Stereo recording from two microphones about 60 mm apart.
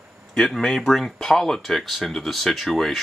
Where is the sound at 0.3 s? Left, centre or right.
Centre.